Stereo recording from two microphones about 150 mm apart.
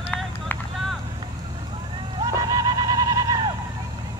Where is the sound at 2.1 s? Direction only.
25° right (ahead or behind).